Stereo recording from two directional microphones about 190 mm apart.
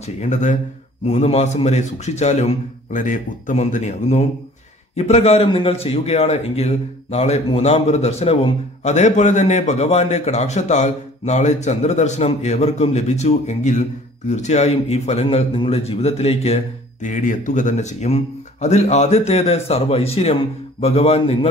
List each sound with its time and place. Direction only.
0.0 s a man's voice: 40° left (ahead or behind)